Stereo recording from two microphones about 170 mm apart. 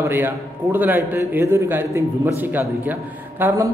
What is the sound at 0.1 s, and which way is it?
A man's voice, 15° right (ahead or behind).